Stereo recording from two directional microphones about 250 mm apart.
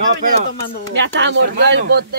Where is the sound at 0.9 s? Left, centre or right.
Right.